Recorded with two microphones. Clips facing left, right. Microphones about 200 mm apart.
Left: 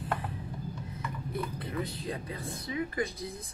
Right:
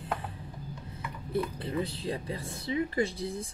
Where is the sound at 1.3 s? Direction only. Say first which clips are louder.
Right 6 dB; 30° right (ahead or behind).